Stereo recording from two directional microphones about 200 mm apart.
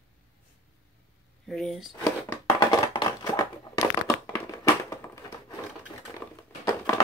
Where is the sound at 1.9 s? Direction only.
15° left (ahead or behind).